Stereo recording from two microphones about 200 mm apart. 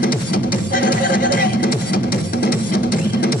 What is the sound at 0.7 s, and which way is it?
Music, 45° left (ahead or behind).